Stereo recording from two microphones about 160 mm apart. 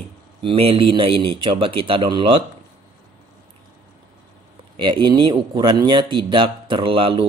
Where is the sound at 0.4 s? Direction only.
35° right (ahead or behind).